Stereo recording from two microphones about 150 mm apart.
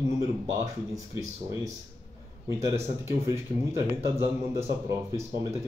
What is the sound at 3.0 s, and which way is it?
Speech, 20° right (ahead or behind).